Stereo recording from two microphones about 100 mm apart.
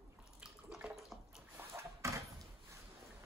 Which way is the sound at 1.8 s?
30° right (ahead or behind).